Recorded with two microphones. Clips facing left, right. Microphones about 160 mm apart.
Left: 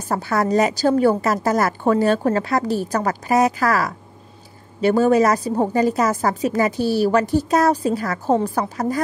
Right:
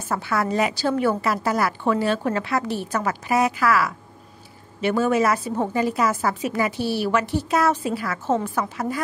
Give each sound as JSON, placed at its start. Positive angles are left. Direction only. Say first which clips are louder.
{"t": 0.1, "sound": "a woman's voice", "louder": "left 4 dB", "side_deg": 40}